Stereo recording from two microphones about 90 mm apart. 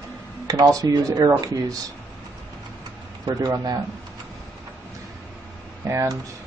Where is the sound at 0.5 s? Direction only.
40° right (ahead or behind).